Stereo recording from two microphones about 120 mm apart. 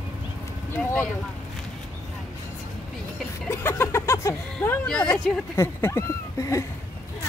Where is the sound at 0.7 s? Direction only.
15° left (ahead or behind).